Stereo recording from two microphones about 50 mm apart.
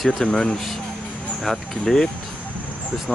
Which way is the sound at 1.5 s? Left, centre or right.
Centre.